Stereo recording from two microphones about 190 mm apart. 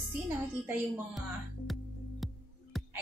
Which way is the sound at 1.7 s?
Centre (ahead or behind).